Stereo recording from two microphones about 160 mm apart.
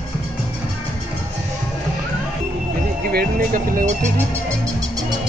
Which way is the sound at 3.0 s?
60° right (ahead or behind).